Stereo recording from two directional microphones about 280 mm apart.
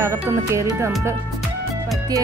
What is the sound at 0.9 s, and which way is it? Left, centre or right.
Speech, centre.